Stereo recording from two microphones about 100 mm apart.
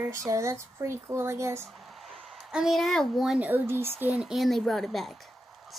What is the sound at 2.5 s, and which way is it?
Speech, centre (ahead or behind).